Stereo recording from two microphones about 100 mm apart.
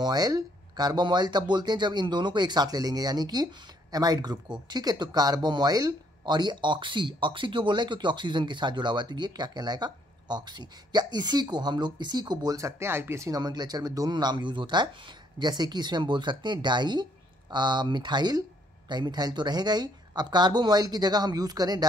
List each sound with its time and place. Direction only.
0.0 s speech: 40° right (ahead or behind)
13.4 s speech: 40° right (ahead or behind)